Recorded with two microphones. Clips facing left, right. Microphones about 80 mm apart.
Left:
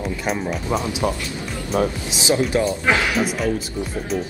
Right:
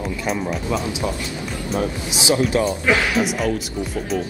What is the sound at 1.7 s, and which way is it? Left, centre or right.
Speech, left.